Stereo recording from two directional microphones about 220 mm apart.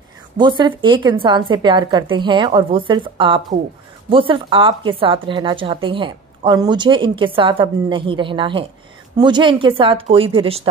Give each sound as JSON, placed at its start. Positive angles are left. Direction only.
{"t": 0.4, "sound": "a woman's voice", "side_deg": -20}